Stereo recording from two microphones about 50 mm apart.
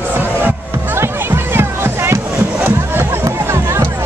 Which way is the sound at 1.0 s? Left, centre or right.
Right.